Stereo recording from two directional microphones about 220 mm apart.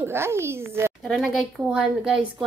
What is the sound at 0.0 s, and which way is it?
Speech, 10° right (ahead or behind).